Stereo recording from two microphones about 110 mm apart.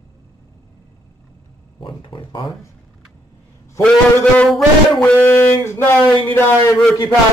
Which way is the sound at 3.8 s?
10° left (ahead or behind).